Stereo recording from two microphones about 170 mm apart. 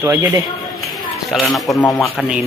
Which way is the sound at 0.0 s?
15° right (ahead or behind).